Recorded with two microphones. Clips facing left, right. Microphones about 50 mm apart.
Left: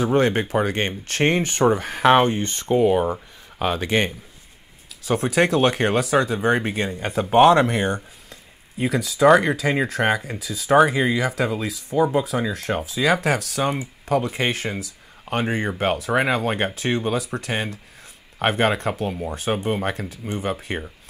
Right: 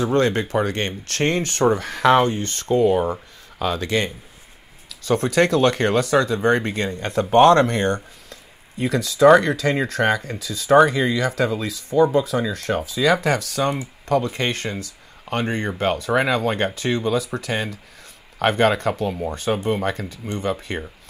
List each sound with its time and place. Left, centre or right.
0.0 s speech: centre
5.0 s speech: centre
13.6 s speech: left
14.1 s speech: centre
19.1 s speech: centre